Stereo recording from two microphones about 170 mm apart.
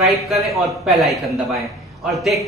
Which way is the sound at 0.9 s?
Centre (ahead or behind).